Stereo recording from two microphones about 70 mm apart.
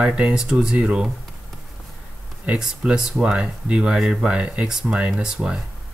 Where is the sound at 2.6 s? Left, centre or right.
Centre.